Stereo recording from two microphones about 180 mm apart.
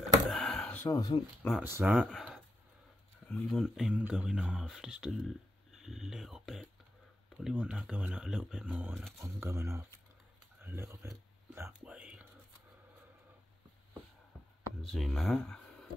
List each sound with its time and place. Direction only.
0.3 s a sound: centre (ahead or behind)
0.8 s speech: 20° left (ahead or behind)
1.6 s speech: 10° right (ahead or behind)
9.2 s speech: 15° right (ahead or behind)
10.6 s whispering: 10° right (ahead or behind)
14.9 s speech: centre (ahead or behind)